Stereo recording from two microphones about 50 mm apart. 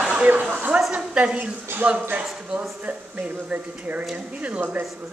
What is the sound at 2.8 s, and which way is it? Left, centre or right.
A woman's voice, right.